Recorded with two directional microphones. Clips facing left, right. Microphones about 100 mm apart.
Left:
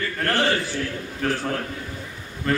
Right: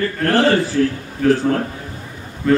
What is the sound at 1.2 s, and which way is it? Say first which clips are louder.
Speech: right 10 dB; centre (ahead or behind).